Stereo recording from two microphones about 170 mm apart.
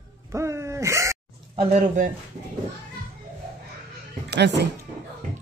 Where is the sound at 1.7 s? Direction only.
45° right (ahead or behind).